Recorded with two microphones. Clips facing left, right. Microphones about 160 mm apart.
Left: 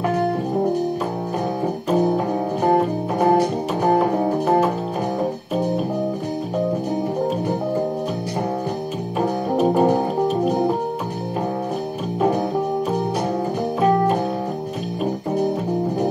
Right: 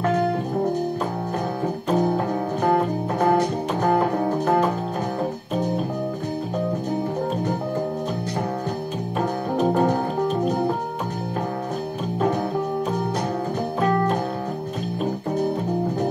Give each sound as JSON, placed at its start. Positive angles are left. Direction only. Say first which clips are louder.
{"t": 3.3, "sound": "music", "louder": "left 3 dB", "side_deg": 15}
{"t": 9.6, "sound": "music", "louder": "left 3 dB", "side_deg": 15}
{"t": 13.7, "sound": "organ", "louder": "left 4 dB", "side_deg": 10}